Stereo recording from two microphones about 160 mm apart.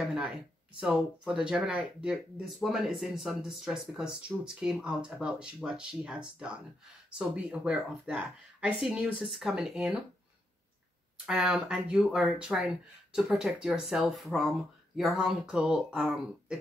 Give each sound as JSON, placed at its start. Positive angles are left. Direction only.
{"t": 0.7, "sound": "speech", "side_deg": -5}
{"t": 11.2, "sound": "speech", "side_deg": -5}